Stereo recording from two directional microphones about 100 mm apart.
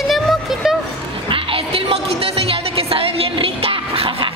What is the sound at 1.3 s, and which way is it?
Music, 65° right (ahead or behind).